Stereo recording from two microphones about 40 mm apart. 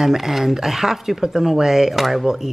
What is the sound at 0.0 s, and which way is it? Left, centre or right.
Speech, centre.